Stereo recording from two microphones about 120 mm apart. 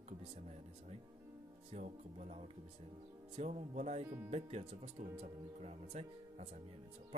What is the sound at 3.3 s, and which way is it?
Speech, 75° right (ahead or behind).